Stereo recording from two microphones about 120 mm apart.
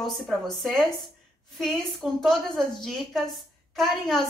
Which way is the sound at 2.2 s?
Centre (ahead or behind).